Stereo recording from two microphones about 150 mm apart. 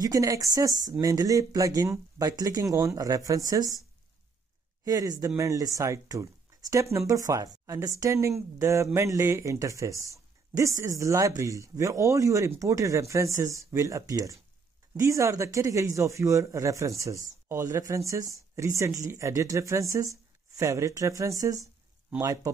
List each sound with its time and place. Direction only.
0.0 s speech: 20° right (ahead or behind)
4.8 s speech: 25° right (ahead or behind)